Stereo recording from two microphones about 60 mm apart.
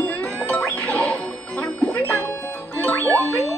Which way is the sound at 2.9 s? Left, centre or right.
Left.